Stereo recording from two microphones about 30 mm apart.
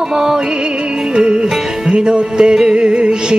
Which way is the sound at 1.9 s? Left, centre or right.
Right.